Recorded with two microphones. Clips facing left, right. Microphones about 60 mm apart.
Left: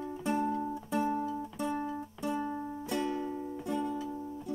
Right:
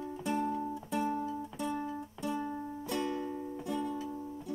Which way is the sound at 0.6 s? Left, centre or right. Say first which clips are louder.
Left 2 dB; left.